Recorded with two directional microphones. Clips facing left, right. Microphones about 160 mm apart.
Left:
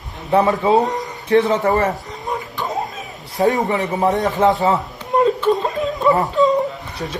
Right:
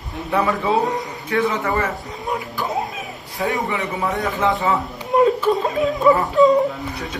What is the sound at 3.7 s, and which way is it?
Speech, 40° left (ahead or behind).